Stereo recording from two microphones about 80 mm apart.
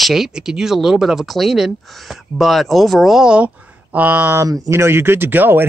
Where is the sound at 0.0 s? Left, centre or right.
Centre.